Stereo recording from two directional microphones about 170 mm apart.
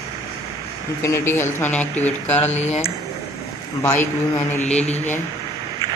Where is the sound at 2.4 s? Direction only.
40° left (ahead or behind).